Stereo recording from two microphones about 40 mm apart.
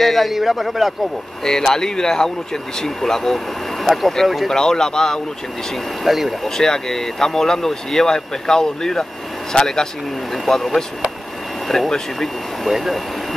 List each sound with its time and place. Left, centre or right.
0.0 s speech: centre
1.4 s speech: centre
3.8 s speech: centre
4.5 s speech: centre
6.0 s speech: centre
6.4 s speech: centre
10.3 s speech: centre